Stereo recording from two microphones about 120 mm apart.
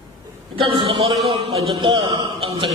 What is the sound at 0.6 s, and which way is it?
A man's voice, 50° right (ahead or behind).